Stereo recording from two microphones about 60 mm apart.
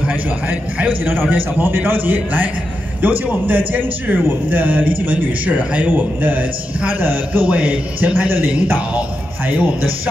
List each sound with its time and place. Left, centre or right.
0.0 s a man's voice: right
7.4 s speech: right